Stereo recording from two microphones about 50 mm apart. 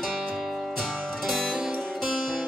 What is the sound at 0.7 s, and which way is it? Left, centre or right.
Music, centre.